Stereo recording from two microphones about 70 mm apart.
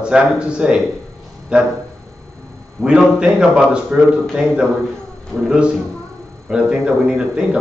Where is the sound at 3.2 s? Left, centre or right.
Centre.